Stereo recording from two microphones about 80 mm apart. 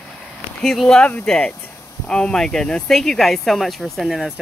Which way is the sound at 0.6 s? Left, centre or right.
Centre.